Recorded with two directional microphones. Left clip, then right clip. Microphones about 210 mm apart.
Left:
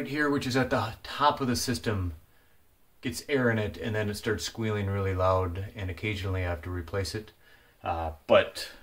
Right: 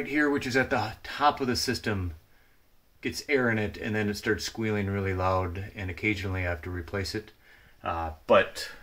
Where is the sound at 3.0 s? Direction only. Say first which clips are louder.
Right 2 dB; 10° right (ahead or behind).